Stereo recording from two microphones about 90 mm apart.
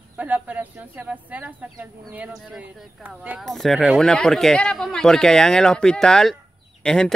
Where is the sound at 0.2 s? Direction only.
20° right (ahead or behind).